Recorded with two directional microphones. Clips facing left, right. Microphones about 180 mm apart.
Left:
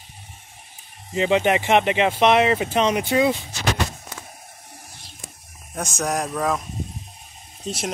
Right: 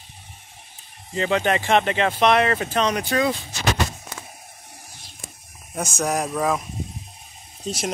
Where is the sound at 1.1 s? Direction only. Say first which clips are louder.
Left 2 dB; 15° left (ahead or behind).